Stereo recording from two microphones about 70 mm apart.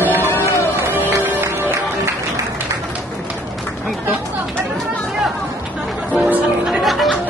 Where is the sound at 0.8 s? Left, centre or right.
Right.